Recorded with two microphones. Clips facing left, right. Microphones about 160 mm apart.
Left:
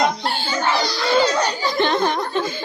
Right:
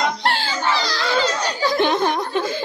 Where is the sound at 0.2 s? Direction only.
90° right.